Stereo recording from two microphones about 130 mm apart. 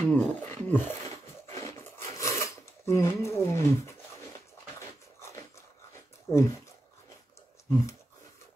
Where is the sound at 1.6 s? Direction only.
25° left (ahead or behind).